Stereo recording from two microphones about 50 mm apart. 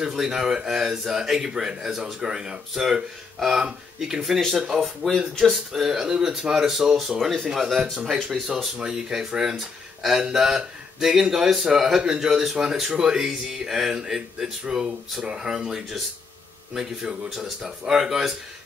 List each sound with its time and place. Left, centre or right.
0.0 s speech: centre
4.8 s speech: centre
5.4 s speech: centre
7.0 s speech: centre